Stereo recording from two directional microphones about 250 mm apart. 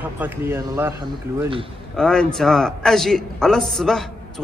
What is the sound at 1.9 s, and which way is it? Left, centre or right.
A man's voice, centre.